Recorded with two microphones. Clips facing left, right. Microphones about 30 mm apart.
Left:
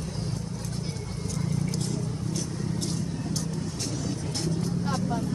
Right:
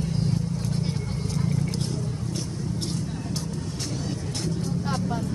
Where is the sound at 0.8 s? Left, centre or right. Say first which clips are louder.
Right 5 dB; right.